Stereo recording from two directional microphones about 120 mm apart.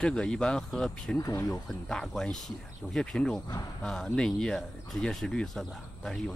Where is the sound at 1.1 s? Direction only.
25° left (ahead or behind).